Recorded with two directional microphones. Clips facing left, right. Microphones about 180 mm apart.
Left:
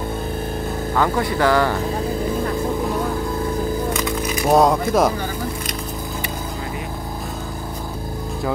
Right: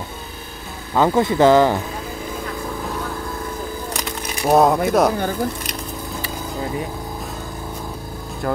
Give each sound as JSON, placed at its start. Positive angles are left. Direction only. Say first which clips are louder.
{"t": 0.9, "sound": "speech", "louder": "right 5 dB", "side_deg": -20}
{"t": 4.5, "sound": "speech", "louder": "right 1 dB", "side_deg": 0}